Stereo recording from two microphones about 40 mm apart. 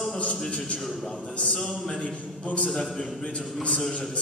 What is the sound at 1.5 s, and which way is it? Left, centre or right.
Speech, centre.